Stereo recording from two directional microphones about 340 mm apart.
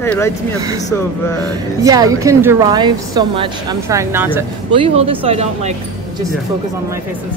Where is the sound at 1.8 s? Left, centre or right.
Centre.